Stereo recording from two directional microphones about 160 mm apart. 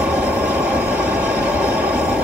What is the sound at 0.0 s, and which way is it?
Vehicle, 10° right (ahead or behind).